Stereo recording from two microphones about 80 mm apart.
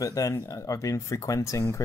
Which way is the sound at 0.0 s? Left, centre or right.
Left.